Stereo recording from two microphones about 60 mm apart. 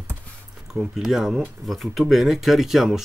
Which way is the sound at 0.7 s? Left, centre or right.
Centre.